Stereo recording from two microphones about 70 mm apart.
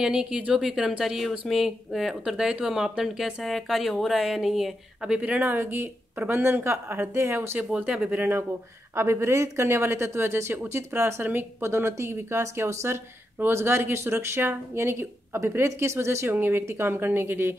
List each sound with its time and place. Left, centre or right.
0.0 s speech: centre
5.4 s a woman's voice: right
7.5 s speech: centre
8.9 s a woman's voice: right